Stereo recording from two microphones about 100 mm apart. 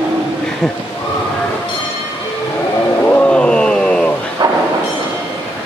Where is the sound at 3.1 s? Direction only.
10° left (ahead or behind).